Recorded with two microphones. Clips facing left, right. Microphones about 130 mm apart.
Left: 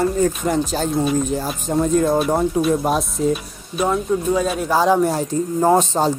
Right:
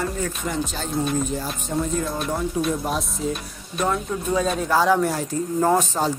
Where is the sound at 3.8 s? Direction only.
5° left (ahead or behind).